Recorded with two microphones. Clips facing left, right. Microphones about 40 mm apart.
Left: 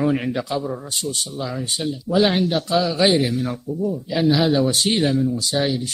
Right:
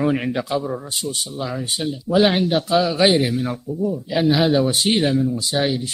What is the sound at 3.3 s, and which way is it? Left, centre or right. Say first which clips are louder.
Speech: even; centre.